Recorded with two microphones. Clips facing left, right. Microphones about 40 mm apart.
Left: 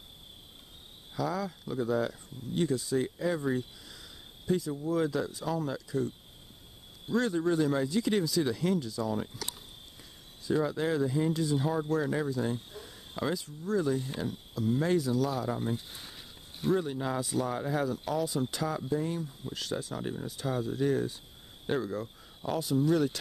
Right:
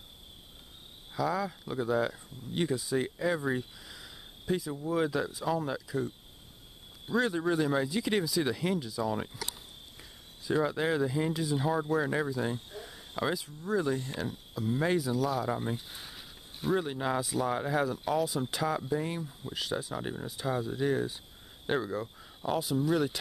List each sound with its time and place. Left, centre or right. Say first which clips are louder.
1.1 s speech: right 2 dB; centre
12.0 s speech: even; right; by 15.5 s centre
15.5 s a sound: even; centre
16.7 s speech: right 1 dB; right
17.2 s speech: even; centre
17.5 s speech: right 1 dB; centre
18.9 s speech: left 1 dB; right
19.2 s speech: right 1 dB; centre